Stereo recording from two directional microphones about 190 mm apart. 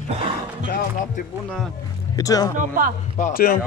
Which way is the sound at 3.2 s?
50° left (ahead or behind).